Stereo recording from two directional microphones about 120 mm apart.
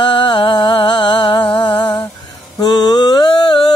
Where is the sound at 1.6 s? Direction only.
40° left (ahead or behind).